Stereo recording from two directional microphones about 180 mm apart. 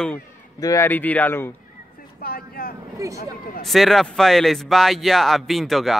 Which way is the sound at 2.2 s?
55° left (ahead or behind).